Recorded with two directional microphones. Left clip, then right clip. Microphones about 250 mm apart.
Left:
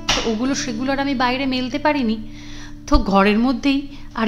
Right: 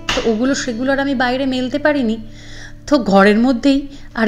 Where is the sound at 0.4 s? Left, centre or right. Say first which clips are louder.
Right 4 dB; centre.